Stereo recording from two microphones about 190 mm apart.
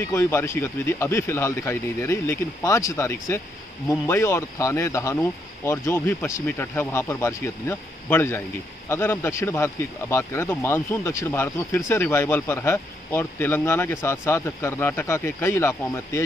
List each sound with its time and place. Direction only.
0.0 s speech: 15° left (ahead or behind)